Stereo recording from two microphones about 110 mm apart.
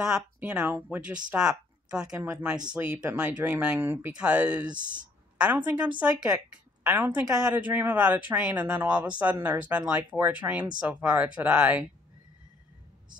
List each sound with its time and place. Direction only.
0.0 s speech: 10° right (ahead or behind)
2.1 s speech: 25° right (ahead or behind)
2.4 s speech: 10° right (ahead or behind)